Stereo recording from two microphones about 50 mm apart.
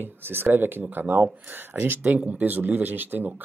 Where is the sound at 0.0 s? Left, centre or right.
Right.